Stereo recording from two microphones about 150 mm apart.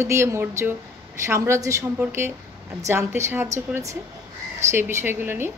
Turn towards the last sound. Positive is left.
turn(degrees=-15)  # may be behind; listen again after turning